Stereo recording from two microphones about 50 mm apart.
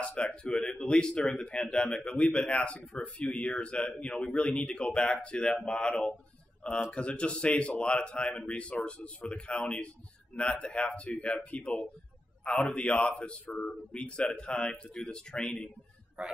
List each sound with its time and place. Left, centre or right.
0.0 s speech: left
16.2 s a man's voice: centre